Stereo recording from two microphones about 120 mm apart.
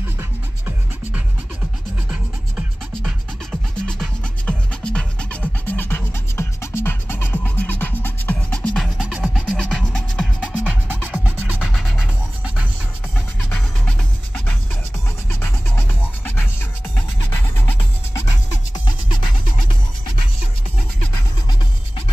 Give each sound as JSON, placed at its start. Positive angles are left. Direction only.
{"t": 0.2, "sound": "music", "side_deg": -15}
{"t": 3.8, "sound": "music", "side_deg": 10}
{"t": 8.9, "sound": "music", "side_deg": -10}
{"t": 9.5, "sound": "music", "side_deg": 5}
{"t": 10.4, "sound": "music", "side_deg": -15}
{"t": 13.5, "sound": "music", "side_deg": 10}
{"t": 17.6, "sound": "music", "side_deg": 15}